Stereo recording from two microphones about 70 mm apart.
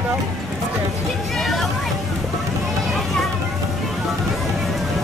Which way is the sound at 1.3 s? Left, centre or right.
Centre.